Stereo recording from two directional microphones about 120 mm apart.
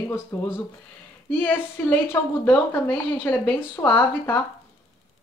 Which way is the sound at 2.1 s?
15° left (ahead or behind).